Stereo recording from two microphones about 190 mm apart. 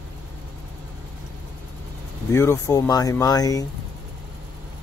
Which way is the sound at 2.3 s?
15° left (ahead or behind).